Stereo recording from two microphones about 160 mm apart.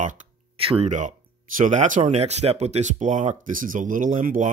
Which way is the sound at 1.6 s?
50° right (ahead or behind).